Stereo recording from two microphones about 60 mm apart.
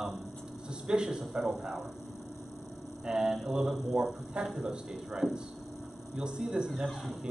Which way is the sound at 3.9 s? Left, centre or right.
Centre.